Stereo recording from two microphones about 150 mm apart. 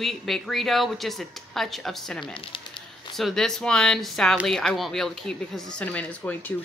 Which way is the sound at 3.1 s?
Centre (ahead or behind).